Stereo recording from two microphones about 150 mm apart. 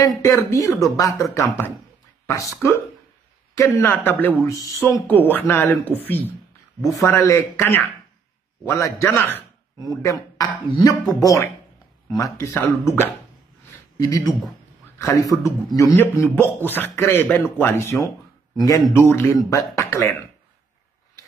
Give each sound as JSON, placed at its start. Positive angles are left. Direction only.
{"t": 0.5, "sound": "speech", "side_deg": 20}
{"t": 13.9, "sound": "speech", "side_deg": 25}